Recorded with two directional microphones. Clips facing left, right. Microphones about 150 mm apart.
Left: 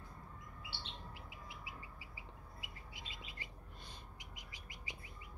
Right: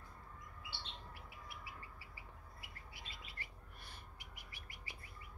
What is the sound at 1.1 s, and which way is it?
Bird, 15° left (ahead or behind).